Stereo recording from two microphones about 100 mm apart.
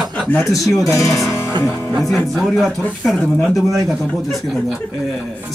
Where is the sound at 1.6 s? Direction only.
25° left (ahead or behind).